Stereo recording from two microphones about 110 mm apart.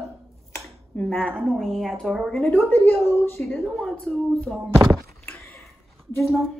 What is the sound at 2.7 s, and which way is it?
Speech, 15° left (ahead or behind).